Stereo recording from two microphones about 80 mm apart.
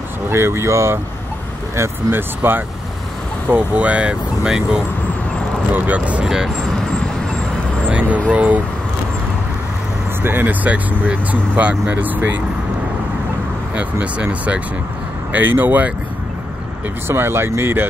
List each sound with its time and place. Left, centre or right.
0.3 s speech: right; by 4.8 s centre
5.7 s speech: right
6.2 s speech: centre
7.9 s vehicle: centre
8.3 s speech: centre
10.2 s speech: right
13.7 s speech: centre
17.1 s speech: right